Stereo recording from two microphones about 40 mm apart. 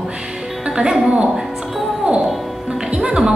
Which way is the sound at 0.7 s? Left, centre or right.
Centre.